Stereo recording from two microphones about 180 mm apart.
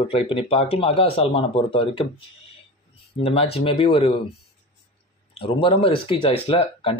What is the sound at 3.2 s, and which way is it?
Speech, 30° left (ahead or behind).